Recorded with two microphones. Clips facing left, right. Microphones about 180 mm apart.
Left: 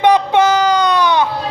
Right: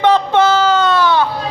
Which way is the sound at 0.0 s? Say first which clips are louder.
Left 1 dB; 15° left (ahead or behind).